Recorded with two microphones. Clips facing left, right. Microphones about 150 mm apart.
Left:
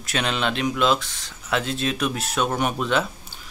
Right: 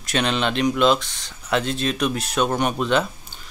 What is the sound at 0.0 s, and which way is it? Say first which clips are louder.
Speech: right 3 dB; 5° left (ahead or behind).